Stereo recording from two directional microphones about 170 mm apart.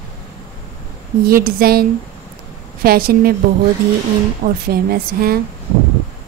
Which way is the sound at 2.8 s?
60° right (ahead or behind).